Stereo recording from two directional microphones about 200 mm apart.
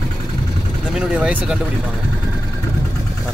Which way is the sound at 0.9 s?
5° right (ahead or behind).